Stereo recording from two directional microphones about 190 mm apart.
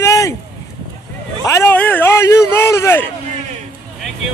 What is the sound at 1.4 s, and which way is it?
Speech, 15° left (ahead or behind).